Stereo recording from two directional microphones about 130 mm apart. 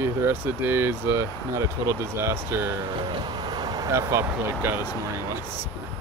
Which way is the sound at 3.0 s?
35° right (ahead or behind).